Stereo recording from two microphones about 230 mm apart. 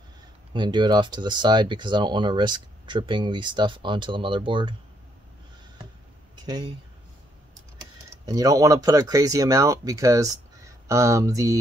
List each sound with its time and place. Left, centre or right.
0.5 s speech: centre
6.3 s a sound: centre
8.3 s speech: centre